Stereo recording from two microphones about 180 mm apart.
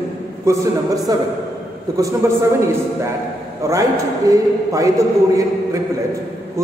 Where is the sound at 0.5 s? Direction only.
20° right (ahead or behind).